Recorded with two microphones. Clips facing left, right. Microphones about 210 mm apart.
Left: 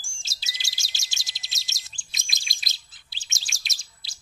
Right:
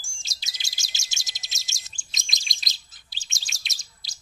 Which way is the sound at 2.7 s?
40° right (ahead or behind).